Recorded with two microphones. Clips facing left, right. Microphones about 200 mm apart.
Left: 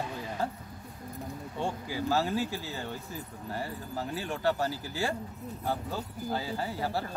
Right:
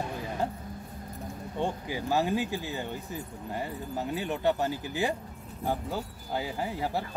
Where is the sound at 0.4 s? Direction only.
20° right (ahead or behind).